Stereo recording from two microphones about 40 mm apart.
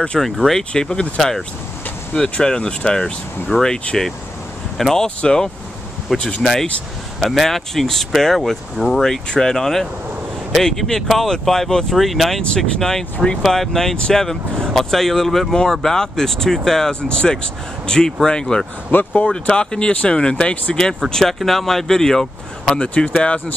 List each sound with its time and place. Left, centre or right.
0.2 s speech: centre
3.5 s speech: left
4.9 s speech: left
6.0 s speech: centre
12.4 s speech: centre
18.9 s speech: left
19.2 s speech: left
22.8 s speech: left